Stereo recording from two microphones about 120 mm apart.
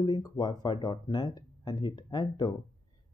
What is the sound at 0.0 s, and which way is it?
Speech, 35° left (ahead or behind).